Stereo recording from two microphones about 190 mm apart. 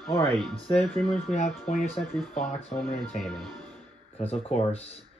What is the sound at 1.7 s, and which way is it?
Speech, 35° left (ahead or behind).